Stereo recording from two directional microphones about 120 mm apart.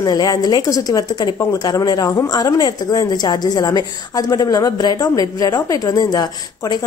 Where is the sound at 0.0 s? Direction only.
30° left (ahead or behind).